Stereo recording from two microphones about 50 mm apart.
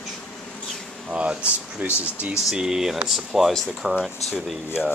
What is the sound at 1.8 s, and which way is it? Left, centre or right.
Speech, right.